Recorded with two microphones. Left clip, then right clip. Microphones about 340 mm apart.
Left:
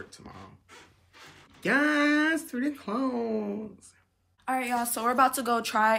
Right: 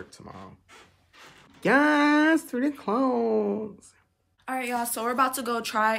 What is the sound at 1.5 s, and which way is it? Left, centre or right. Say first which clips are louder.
Speech: right 4 dB; right.